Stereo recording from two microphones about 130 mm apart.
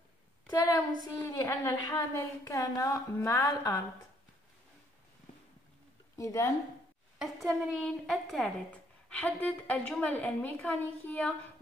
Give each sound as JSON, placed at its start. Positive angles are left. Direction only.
{"t": 0.5, "sound": "a woman's voice", "side_deg": 25}
{"t": 6.1, "sound": "speech", "side_deg": 25}
{"t": 7.2, "sound": "a woman's voice", "side_deg": 0}